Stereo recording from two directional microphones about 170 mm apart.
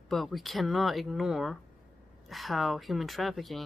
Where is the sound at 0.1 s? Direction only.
Centre (ahead or behind).